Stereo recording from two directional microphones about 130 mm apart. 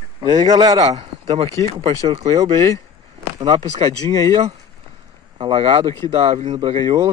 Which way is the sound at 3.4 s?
40° right (ahead or behind).